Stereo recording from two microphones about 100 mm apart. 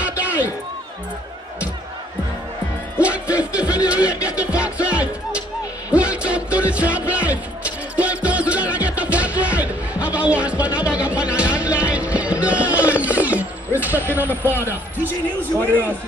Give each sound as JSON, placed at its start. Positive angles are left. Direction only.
{"t": 0.0, "sound": "a sound", "side_deg": -15}
{"t": 3.0, "sound": "music", "side_deg": -10}
{"t": 15.6, "sound": "speech", "side_deg": 20}